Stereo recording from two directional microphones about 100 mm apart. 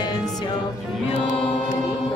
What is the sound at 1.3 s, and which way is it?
Music, 75° left (ahead or behind).